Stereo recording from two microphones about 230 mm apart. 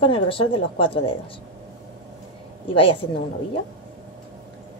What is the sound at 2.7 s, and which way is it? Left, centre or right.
Speech, left.